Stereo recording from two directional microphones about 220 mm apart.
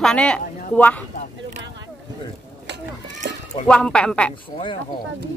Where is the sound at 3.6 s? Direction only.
5° left (ahead or behind).